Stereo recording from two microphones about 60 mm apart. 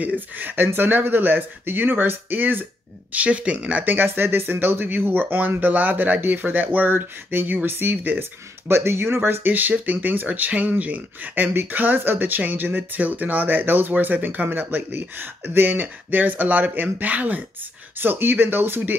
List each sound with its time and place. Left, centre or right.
0.0 s speech: right